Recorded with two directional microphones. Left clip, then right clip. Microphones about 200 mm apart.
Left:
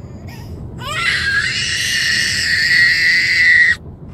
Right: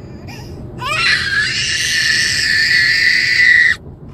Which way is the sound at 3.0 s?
20° left (ahead or behind).